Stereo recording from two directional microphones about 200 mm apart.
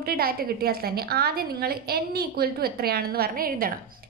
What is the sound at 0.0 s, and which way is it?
A woman's voice, 50° right (ahead or behind).